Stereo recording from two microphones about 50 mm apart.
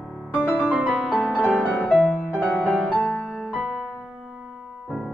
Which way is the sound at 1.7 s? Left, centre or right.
Left.